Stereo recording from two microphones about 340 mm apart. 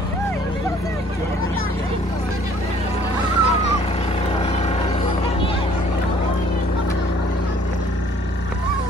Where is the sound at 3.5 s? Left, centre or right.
Centre.